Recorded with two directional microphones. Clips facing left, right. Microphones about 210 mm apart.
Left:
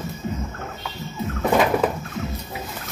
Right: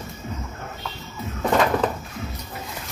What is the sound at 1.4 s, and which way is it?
Cupboard open or close, 10° left (ahead or behind).